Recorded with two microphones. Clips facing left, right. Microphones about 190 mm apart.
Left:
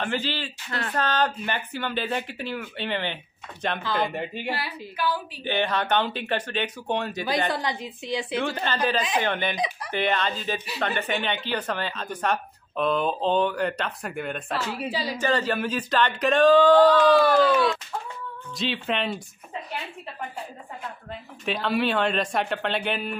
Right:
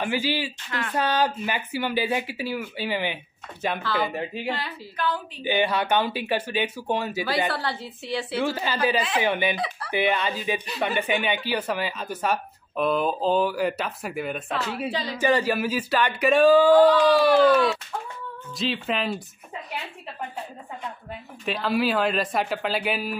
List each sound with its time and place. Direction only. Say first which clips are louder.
0.0 s speech: right 3 dB; 10° right (ahead or behind)
0.7 s speech: even; 35° left (ahead or behind)
0.9 s a woman's voice: right 2 dB; 10° right (ahead or behind); by 5.2 s 10° left (ahead or behind)
5.4 s speech: right 3 dB; 10° right (ahead or behind)
7.5 s a woman's voice: left 1 dB; 15° left (ahead or behind)
8.4 s speech: right 3 dB; 10° right (ahead or behind)
15.1 s speech: right 3 dB; 10° right (ahead or behind)
21.1 s speech: left 1 dB; centre (ahead or behind)